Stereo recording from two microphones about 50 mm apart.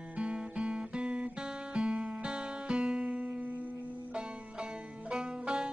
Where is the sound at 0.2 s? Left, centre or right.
Right.